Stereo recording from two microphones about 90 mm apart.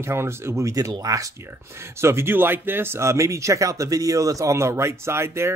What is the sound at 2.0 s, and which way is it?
Speech, 30° right (ahead or behind).